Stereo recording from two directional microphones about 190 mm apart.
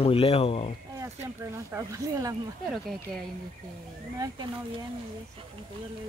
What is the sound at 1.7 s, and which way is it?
Speech, 15° right (ahead or behind).